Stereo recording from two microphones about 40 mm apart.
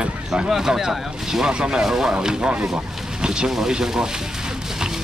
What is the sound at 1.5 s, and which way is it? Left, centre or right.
Speech, right.